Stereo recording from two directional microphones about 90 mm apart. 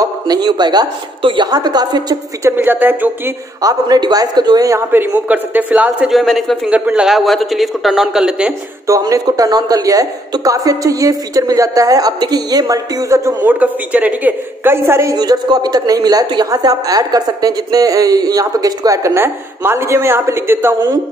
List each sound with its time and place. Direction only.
0.0 s a woman's voice: 50° right (ahead or behind)
2.4 s a woman's voice: 20° right (ahead or behind)
3.6 s a woman's voice: 45° right (ahead or behind)
5.1 s a man's voice: 20° right (ahead or behind)
6.0 s a man's voice: centre (ahead or behind)
6.7 s a man's voice: 15° right (ahead or behind)
7.1 s a man's voice: centre (ahead or behind)
9.0 s a woman's voice: 45° right (ahead or behind)
13.5 s a woman's voice: 15° right (ahead or behind)
15.1 s a woman's voice: 50° right (ahead or behind); by 20.9 s 25° right (ahead or behind)